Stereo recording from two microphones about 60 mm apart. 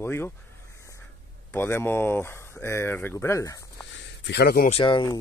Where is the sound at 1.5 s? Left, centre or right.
Left.